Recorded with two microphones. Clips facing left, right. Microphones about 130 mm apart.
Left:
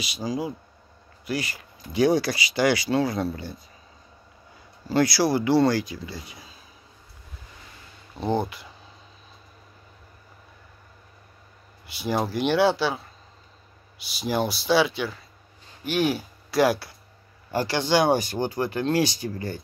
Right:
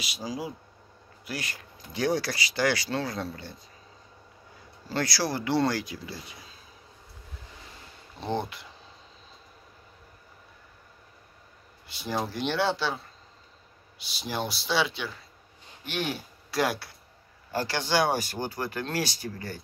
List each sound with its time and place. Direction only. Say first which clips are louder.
0.0 s speech: left 6 dB; centre (ahead or behind)
4.8 s speech: left 8 dB; 10° left (ahead or behind)
8.2 s speech: left 5 dB; 5° left (ahead or behind)
11.9 s speech: left 5 dB; 10° left (ahead or behind)
14.0 s speech: left 7 dB; 5° left (ahead or behind)
17.5 s speech: left 5 dB; 15° left (ahead or behind)